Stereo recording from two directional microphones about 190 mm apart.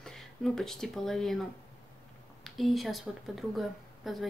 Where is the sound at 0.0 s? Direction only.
Centre (ahead or behind).